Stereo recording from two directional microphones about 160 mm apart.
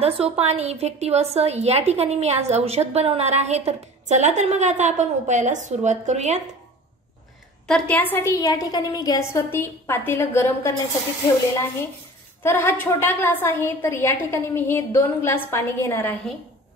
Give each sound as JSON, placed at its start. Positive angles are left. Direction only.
{"t": 0.0, "sound": "a woman's voice", "side_deg": -40}
{"t": 7.6, "sound": "a woman's voice", "side_deg": 5}
{"t": 9.3, "sound": "a woman's voice", "side_deg": 15}
{"t": 12.4, "sound": "a woman's voice", "side_deg": 15}